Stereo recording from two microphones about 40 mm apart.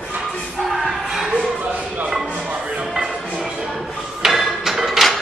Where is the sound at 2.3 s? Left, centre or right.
Right.